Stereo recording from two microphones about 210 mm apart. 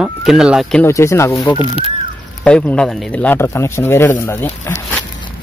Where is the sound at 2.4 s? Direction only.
5° left (ahead or behind).